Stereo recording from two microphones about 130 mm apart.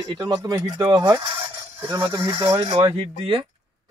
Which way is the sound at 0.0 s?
30° right (ahead or behind).